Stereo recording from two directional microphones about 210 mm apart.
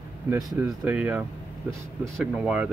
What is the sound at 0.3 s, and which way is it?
Speech, 10° right (ahead or behind).